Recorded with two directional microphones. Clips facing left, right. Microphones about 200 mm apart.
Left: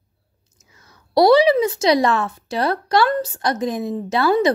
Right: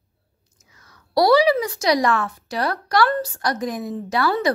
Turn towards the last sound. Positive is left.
turn(degrees=25)  # may be behind; listen again after turning